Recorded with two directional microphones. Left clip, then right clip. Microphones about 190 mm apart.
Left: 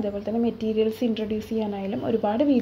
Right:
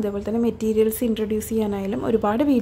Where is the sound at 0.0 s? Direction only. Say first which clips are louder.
Right 3 dB; 30° right (ahead or behind).